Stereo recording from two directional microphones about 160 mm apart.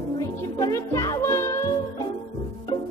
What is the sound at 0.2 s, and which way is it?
Music, 20° left (ahead or behind).